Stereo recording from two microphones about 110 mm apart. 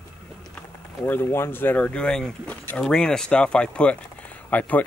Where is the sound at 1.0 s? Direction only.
20° left (ahead or behind).